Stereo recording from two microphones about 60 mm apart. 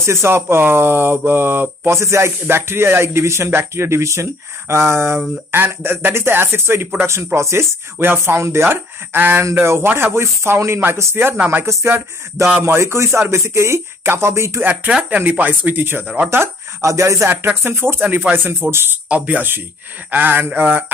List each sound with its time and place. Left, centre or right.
0.0 s speech: right
2.0 s speech: right
11.3 s speech: right
12.6 s speech: right
14.6 s speech: right
16.8 s speech: right
17.6 s speech: right
19.0 s speech: right